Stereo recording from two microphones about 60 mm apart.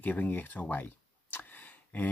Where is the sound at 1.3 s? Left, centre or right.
Left.